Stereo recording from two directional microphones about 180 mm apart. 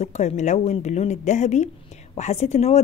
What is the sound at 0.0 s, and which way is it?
A woman's voice, 40° left (ahead or behind).